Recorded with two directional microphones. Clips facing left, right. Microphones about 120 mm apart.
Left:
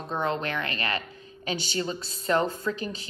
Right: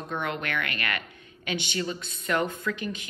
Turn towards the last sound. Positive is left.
turn(degrees=35)  # may be behind; listen again after turning